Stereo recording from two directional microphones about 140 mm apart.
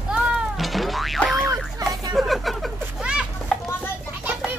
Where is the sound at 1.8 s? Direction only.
25° right (ahead or behind).